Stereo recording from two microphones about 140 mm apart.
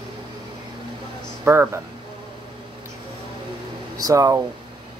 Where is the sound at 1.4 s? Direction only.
15° right (ahead or behind).